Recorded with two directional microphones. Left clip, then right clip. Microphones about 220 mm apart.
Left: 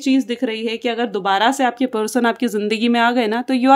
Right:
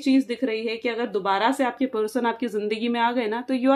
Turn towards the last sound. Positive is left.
turn(degrees=50)  # may be behind; listen again after turning